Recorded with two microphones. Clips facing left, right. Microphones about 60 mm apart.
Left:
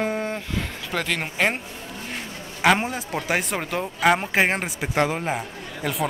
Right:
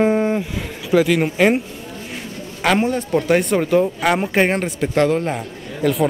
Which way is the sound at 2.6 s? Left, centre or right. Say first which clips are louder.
Right 3 dB; centre.